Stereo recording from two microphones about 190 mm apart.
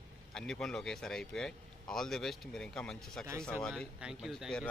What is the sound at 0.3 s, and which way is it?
A man's voice, 5° left (ahead or behind).